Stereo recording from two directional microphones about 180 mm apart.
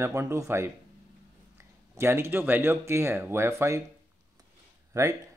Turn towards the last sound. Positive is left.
turn(degrees=-15)  # may be behind; listen again after turning